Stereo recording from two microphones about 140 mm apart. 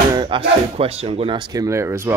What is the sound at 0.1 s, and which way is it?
Speech, 35° right (ahead or behind).